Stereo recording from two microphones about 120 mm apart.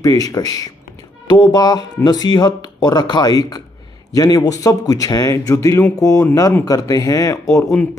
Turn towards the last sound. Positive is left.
turn(degrees=25)  # may be behind; listen again after turning